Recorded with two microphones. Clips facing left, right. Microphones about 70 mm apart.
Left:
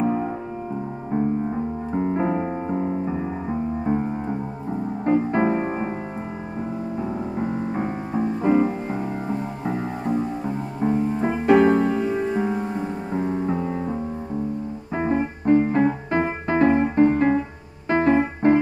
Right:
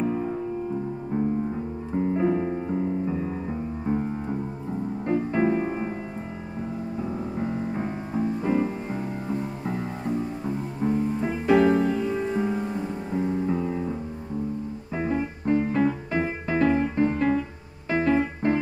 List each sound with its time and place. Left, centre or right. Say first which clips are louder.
0.0 s music: left 4 dB; left
2.0 s music: even; left
7.3 s music: left 3 dB; left
12.1 s music: left 3 dB; left
15.0 s music: left 4 dB; left
17.8 s piano: left 4 dB; left